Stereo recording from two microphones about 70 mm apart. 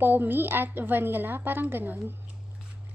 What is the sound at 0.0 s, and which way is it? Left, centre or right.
A woman's voice, right.